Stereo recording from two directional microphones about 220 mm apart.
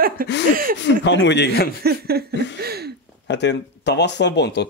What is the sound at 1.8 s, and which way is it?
Laughter, 45° right (ahead or behind).